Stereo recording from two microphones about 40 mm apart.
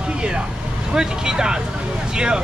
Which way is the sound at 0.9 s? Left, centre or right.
Centre.